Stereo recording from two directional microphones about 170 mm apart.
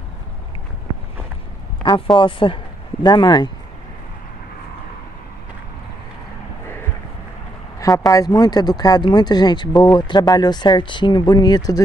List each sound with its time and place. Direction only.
1.8 s a sound: 25° left (ahead or behind)
2.1 s speech: 30° left (ahead or behind)
8.1 s speech: 20° left (ahead or behind)